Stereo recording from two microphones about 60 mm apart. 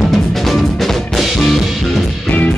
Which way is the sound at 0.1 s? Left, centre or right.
Centre.